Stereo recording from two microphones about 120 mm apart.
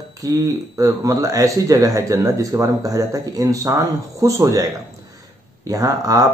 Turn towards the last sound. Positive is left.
turn(degrees=-30)  # may be behind; listen again after turning